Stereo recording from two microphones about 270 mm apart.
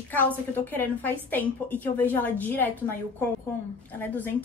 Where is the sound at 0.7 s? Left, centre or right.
Centre.